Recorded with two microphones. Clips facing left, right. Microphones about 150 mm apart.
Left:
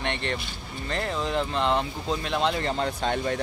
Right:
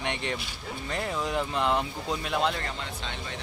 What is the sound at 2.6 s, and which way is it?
Speech, 40° left (ahead or behind).